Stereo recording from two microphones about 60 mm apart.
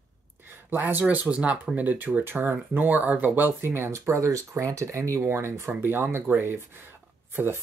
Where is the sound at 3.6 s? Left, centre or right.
Right.